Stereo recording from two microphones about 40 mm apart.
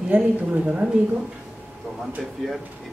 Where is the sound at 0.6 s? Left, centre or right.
Right.